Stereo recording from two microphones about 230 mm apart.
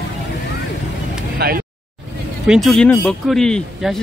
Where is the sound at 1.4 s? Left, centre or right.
Right.